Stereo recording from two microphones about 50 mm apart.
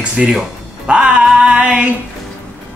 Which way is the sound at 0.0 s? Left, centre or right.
Right.